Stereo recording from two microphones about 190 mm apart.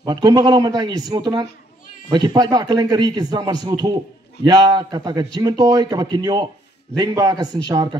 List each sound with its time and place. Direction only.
0.0 s a man's voice: 20° right (ahead or behind)